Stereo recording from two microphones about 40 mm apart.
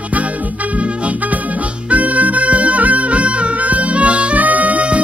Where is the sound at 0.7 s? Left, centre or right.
Right.